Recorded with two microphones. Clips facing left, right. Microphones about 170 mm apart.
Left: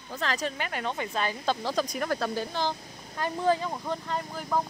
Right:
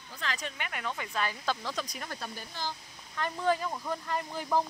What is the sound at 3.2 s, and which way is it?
Speech, 30° left (ahead or behind).